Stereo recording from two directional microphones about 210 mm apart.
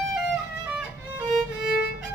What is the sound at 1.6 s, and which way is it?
Violin, 50° left (ahead or behind).